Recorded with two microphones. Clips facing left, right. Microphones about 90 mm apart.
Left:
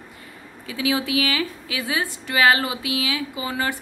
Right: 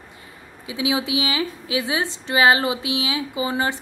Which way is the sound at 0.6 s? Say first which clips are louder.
Even; 20° right (ahead or behind).